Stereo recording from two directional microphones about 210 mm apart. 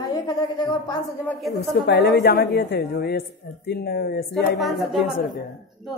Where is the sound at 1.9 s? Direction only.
50° left (ahead or behind).